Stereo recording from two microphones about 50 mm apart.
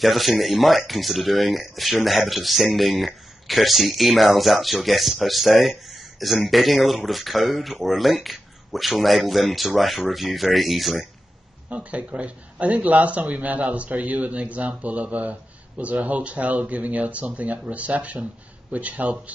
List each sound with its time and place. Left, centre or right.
0.0 s speech: centre
11.7 s speech: right